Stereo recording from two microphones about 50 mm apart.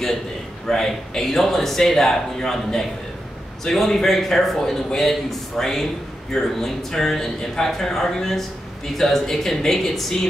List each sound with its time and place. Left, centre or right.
0.7 s a man's voice: centre